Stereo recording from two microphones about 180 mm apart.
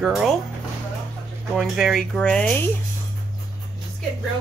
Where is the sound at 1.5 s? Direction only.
Centre (ahead or behind).